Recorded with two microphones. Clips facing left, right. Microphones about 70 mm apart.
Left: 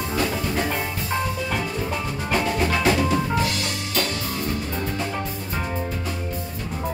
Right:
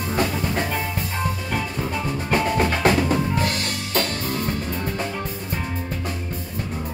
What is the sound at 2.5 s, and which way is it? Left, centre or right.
Music, right.